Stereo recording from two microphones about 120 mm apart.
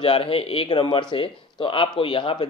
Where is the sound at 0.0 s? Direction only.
50° left (ahead or behind).